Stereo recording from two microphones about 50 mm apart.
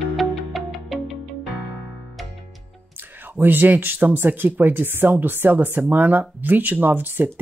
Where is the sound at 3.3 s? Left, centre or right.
Right.